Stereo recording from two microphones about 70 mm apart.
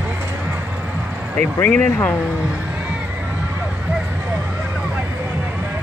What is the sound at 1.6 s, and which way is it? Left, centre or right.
Speech, left.